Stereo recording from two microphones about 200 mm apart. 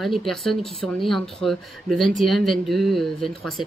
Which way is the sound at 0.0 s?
Centre (ahead or behind).